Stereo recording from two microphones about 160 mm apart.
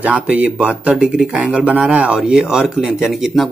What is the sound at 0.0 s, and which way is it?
Speech, 10° right (ahead or behind).